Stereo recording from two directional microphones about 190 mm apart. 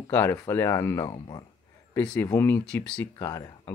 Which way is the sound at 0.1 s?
15° left (ahead or behind).